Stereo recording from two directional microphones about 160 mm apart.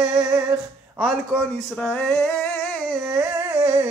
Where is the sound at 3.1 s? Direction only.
15° right (ahead or behind).